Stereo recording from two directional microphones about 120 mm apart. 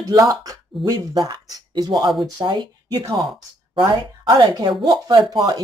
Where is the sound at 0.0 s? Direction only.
30° right (ahead or behind).